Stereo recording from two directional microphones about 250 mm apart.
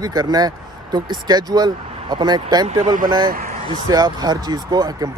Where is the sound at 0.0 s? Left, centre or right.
Centre.